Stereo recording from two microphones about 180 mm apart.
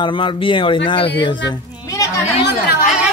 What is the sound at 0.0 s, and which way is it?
Speech, 25° left (ahead or behind).